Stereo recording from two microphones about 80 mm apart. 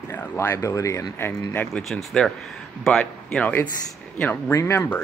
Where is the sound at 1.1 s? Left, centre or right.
Left.